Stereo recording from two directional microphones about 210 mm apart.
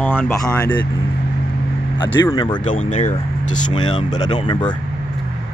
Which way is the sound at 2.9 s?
35° left (ahead or behind).